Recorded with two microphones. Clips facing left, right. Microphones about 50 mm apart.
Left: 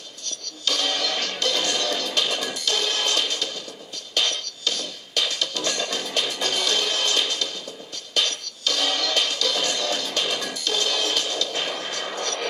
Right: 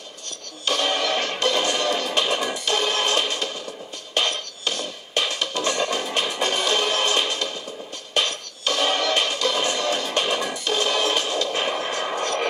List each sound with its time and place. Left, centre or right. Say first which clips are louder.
0.7 s music: right 3 dB; right
11.5 s vehicle: right 4 dB; right